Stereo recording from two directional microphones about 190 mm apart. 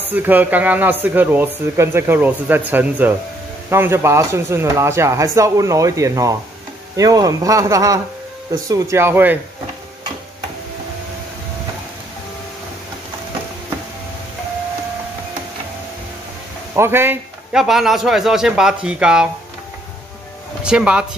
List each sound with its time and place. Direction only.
0.1 s speech: 10° right (ahead or behind)
16.7 s a man's voice: 10° right (ahead or behind)
20.6 s a man's voice: 5° right (ahead or behind)